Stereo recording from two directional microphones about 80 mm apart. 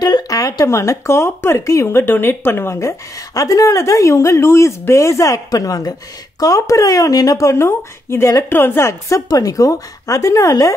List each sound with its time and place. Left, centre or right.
0.0 s a sound: left
0.7 s speech: left
9.3 s speech: left